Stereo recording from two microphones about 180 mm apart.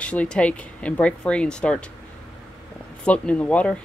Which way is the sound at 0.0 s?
5° left (ahead or behind).